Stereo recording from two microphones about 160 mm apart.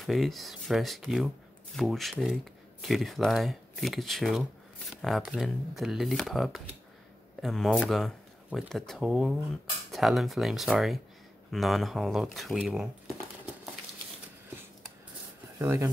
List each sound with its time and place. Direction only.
0.0 s speech: centre (ahead or behind)
15.6 s speech: 20° right (ahead or behind)